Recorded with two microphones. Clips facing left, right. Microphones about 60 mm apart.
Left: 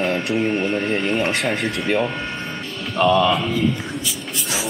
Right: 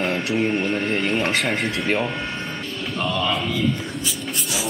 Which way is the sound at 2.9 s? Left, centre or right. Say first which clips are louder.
Left 8 dB; left.